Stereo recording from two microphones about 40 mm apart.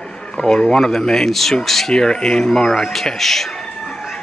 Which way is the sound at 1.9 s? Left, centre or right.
Centre.